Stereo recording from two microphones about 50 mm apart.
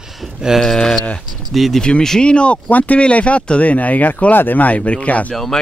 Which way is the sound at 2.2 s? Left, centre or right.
Left.